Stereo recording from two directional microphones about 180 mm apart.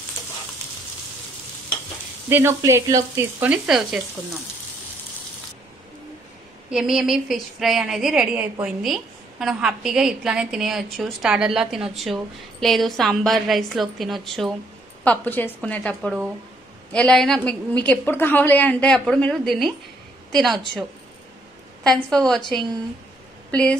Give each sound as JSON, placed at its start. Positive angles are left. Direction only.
{"t": 2.2, "sound": "speech", "side_deg": -15}
{"t": 6.7, "sound": "a woman's voice", "side_deg": -5}
{"t": 21.8, "sound": "a woman's voice", "side_deg": 5}